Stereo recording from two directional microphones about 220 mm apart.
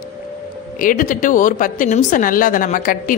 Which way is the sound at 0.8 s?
40° left (ahead or behind).